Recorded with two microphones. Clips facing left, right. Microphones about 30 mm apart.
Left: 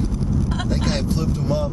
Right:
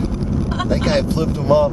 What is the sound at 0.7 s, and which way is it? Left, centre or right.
Vehicle, right.